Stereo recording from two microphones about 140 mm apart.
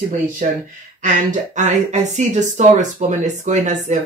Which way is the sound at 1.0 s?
60° right (ahead or behind).